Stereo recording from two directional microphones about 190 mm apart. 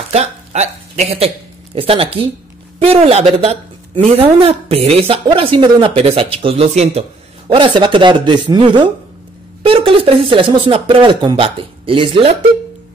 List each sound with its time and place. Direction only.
0.1 s a woman's voice: 35° right (ahead or behind)